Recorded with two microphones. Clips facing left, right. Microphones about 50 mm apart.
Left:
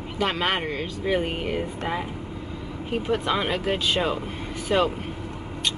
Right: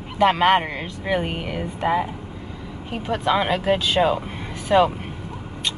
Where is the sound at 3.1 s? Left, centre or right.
Centre.